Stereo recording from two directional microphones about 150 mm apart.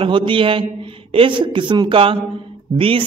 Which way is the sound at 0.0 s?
35° right (ahead or behind).